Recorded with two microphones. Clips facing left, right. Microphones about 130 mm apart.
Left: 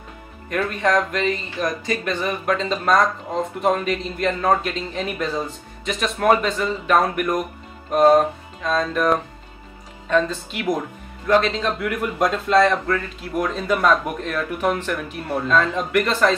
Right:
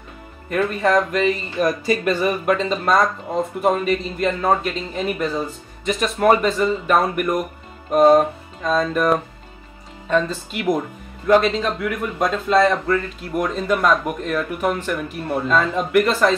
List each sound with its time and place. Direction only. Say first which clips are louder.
0.5 s speech: right 2 dB; centre (ahead or behind)